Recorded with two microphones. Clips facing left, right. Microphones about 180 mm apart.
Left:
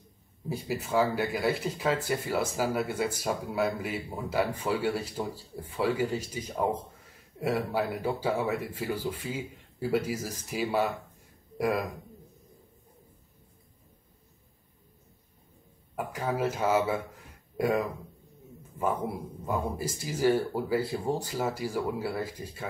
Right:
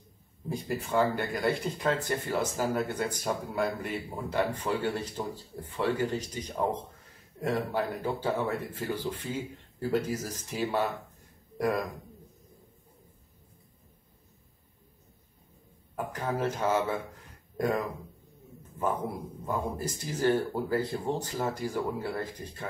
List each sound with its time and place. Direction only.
0.5 s speech: 5° left (ahead or behind)
16.0 s speech: 5° left (ahead or behind)
19.4 s speech: 5° left (ahead or behind)